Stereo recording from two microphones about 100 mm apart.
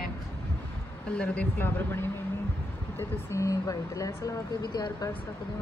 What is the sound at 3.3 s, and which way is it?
Speech, 30° left (ahead or behind).